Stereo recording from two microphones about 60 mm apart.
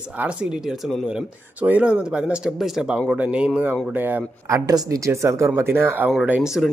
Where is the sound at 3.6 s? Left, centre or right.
Right.